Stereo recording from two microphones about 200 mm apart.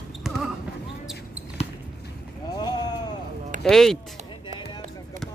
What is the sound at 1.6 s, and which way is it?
Basketball bounce, 30° left (ahead or behind).